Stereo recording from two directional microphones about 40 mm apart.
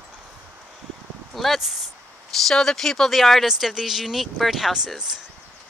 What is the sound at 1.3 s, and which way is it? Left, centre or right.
Speech, centre.